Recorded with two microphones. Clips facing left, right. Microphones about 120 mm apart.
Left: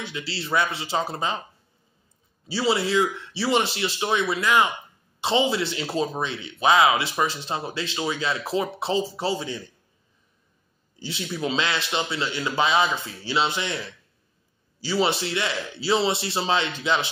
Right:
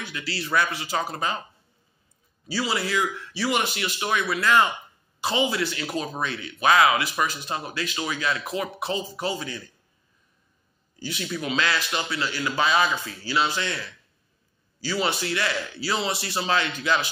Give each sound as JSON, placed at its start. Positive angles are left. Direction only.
{"t": 0.0, "sound": "speech", "side_deg": 25}
{"t": 2.4, "sound": "speech", "side_deg": 25}
{"t": 11.0, "sound": "speech", "side_deg": 25}
{"t": 14.8, "sound": "speech", "side_deg": 25}